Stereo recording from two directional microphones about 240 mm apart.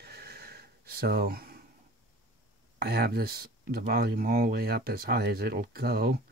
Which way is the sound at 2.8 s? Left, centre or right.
Right.